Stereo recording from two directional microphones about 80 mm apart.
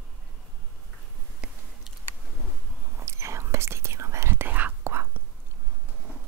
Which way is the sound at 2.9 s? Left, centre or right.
Right.